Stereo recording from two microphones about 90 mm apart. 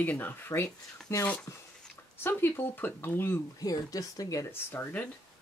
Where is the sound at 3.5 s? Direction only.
45° left (ahead or behind).